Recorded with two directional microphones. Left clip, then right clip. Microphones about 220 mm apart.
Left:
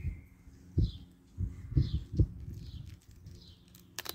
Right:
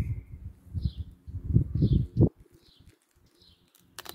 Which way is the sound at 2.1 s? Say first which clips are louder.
Right 11 dB; 50° right (ahead or behind).